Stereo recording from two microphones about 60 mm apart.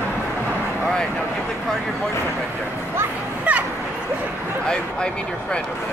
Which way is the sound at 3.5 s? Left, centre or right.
Right.